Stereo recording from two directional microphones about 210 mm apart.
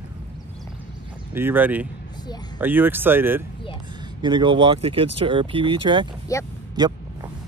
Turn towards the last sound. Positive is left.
turn(degrees=-20)  # may be behind; listen again after turning